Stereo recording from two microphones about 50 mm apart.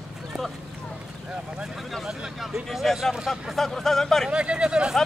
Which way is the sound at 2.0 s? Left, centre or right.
Centre.